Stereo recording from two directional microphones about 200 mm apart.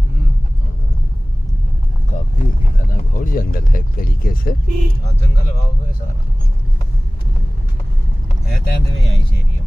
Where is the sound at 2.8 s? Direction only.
45° left (ahead or behind).